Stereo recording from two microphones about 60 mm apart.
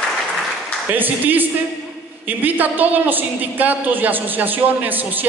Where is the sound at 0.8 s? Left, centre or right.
Right.